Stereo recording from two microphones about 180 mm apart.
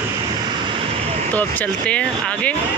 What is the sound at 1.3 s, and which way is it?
Speech, 10° left (ahead or behind).